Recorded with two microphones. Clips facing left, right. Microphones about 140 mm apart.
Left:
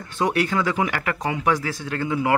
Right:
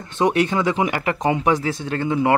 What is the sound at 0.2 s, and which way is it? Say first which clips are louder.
A man's voice: right 3 dB; 20° right (ahead or behind).